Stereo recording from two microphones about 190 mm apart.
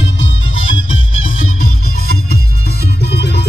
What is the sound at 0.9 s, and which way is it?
Music, 45° left (ahead or behind).